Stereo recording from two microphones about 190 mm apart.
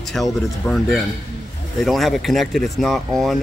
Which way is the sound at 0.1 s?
Centre (ahead or behind).